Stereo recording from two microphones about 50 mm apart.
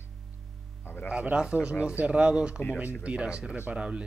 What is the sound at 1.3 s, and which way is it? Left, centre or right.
Speech, right.